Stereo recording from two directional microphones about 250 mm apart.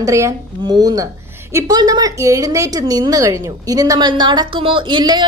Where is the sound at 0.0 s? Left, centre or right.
Centre.